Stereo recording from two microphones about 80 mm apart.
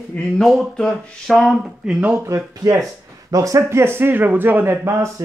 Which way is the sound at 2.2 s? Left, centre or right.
Right.